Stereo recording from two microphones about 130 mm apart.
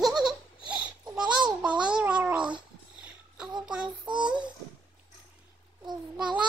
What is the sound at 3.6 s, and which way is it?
Child singing, 10° right (ahead or behind).